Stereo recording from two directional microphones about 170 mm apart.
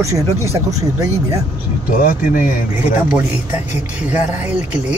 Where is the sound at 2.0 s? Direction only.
55° left (ahead or behind).